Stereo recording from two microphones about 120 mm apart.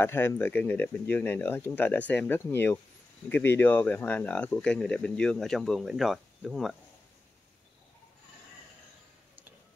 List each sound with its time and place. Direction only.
0.0 s speech: 20° left (ahead or behind); by 6.8 s centre (ahead or behind)